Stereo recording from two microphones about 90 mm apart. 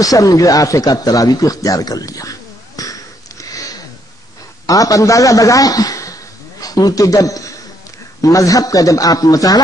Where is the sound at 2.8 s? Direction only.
40° left (ahead or behind).